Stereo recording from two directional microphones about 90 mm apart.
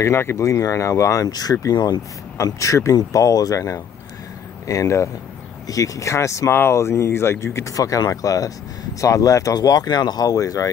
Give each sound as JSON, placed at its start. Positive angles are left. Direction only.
{"t": 0.0, "sound": "speech", "side_deg": 30}
{"t": 2.3, "sound": "speech", "side_deg": 35}